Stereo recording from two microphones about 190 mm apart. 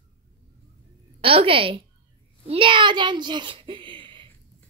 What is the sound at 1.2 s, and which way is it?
A child's voice, 30° right (ahead or behind).